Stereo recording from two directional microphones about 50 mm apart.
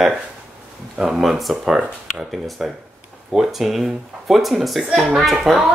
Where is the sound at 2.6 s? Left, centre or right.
Centre.